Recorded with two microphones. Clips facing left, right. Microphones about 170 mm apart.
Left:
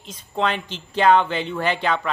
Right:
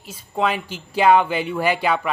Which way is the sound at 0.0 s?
5° right (ahead or behind).